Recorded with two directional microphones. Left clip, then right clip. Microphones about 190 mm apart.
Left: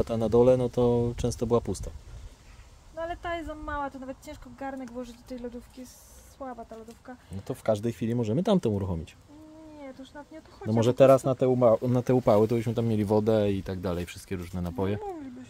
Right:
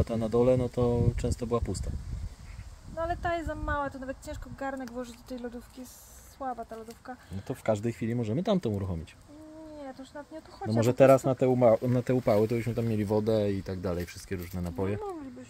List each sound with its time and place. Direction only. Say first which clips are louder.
0.0 s speech: left 4 dB; 25° left (ahead or behind)
3.0 s speech: right 2 dB; 10° left (ahead or behind)
9.9 s speech: right 1 dB; 10° left (ahead or behind)